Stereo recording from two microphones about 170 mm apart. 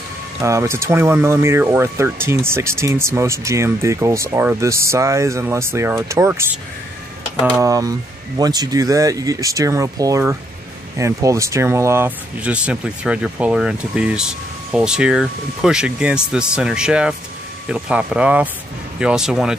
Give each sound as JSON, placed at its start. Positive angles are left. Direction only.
{"t": 0.4, "sound": "speech", "side_deg": -15}
{"t": 7.4, "sound": "speech", "side_deg": -15}